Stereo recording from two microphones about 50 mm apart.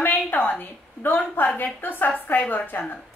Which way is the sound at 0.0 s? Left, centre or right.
Left.